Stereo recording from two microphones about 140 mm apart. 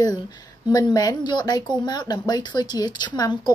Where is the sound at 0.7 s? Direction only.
25° left (ahead or behind).